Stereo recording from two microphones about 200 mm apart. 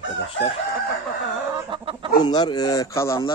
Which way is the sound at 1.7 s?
25° right (ahead or behind).